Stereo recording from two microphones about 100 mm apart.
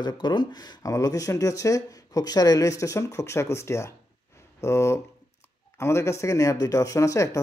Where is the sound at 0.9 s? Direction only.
35° left (ahead or behind).